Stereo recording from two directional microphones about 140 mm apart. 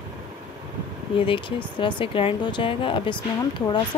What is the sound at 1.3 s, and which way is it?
Speech, 35° left (ahead or behind).